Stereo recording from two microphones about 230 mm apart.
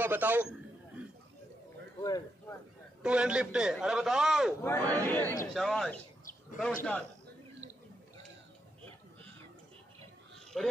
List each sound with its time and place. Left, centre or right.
0.0 s a sound: centre
2.0 s speech: centre
3.0 s a man's voice: centre
4.6 s a man's voice: centre
10.5 s a man's voice: centre